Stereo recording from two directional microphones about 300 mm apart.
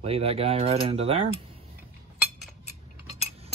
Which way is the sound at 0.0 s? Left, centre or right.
Centre.